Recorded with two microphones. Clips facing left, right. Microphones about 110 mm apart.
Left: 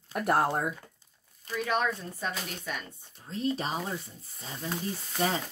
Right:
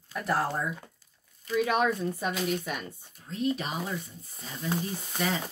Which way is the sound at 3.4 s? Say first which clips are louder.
Right 1 dB; 35° left (ahead or behind).